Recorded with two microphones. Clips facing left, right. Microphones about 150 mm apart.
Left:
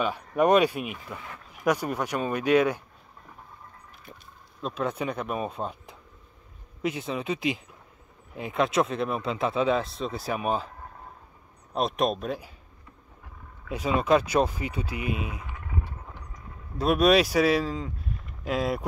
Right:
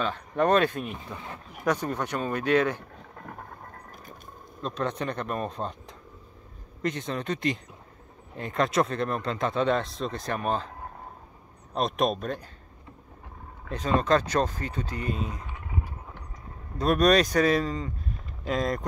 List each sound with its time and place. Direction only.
0.4 s speech: 10° left (ahead or behind)
0.9 s speech: 25° right (ahead or behind)
1.6 s speech: 10° left (ahead or behind)
3.2 s a sound: 70° right (ahead or behind)
4.6 s speech: 5° left (ahead or behind)
11.7 s speech: centre (ahead or behind)
13.7 s speech: 10° left (ahead or behind)
16.7 s speech: 5° left (ahead or behind)